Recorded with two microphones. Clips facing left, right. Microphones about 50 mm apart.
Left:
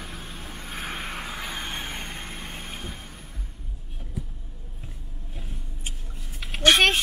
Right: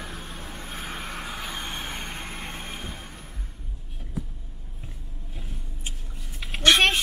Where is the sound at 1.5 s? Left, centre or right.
Centre.